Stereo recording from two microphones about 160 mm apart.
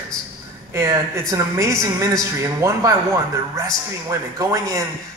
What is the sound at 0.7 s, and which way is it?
A woman's voice, 15° right (ahead or behind).